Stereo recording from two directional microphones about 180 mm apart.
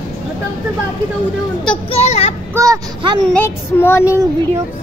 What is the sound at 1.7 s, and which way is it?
Speech, 30° left (ahead or behind).